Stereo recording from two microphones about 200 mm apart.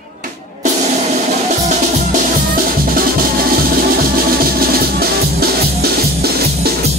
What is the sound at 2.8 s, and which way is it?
Music, 45° right (ahead or behind).